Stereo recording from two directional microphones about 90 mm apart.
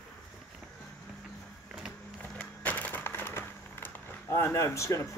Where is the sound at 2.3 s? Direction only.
15° left (ahead or behind).